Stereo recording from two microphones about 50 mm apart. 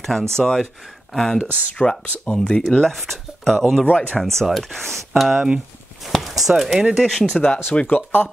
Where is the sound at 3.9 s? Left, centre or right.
Left.